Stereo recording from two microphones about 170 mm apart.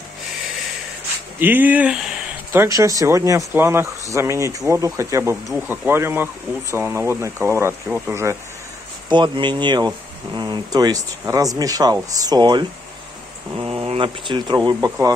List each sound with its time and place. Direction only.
1.4 s speech: 10° right (ahead or behind)
9.1 s speech: 25° right (ahead or behind)